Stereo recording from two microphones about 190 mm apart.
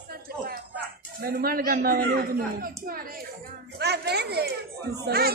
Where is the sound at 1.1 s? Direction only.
50° right (ahead or behind).